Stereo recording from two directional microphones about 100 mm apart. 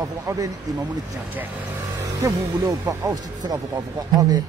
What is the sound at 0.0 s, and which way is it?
Speech, 35° right (ahead or behind).